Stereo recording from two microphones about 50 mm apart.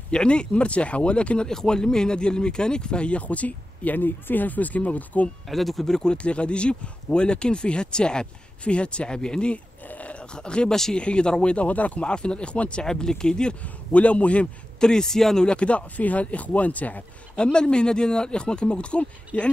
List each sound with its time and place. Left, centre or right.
0.1 s speech: centre
1.5 s speech: centre; by 5.3 s left
5.5 s speech: centre
6.1 s speech: left
9.8 s a sound: left
11.0 s speech: centre
13.6 s speech: left
17.4 s speech: centre